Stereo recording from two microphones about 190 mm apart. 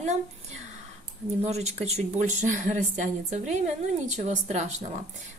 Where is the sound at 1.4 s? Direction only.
35° right (ahead or behind).